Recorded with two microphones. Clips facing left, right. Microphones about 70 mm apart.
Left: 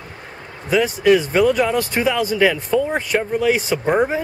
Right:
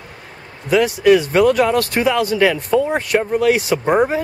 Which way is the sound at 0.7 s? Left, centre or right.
Centre.